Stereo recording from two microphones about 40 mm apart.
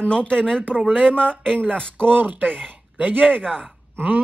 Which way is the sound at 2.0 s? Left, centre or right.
Right.